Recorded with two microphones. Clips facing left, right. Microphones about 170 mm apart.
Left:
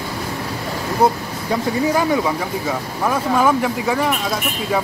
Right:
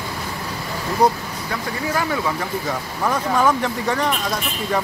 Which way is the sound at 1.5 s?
20° left (ahead or behind).